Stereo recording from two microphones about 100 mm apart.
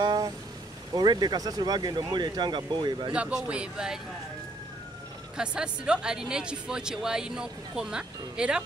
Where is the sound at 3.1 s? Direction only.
10° right (ahead or behind).